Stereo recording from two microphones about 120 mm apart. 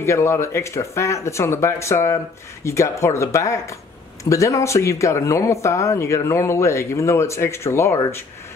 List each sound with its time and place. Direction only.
0.0 s speech: 25° left (ahead or behind)